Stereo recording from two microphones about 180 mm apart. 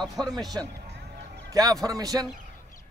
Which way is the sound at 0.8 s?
70° right (ahead or behind).